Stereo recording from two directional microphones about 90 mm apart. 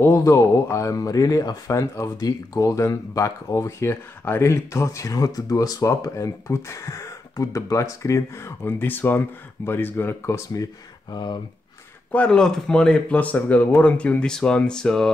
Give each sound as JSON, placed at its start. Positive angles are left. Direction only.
{"t": 0.0, "sound": "speech", "side_deg": 30}
{"t": 12.1, "sound": "speech", "side_deg": 10}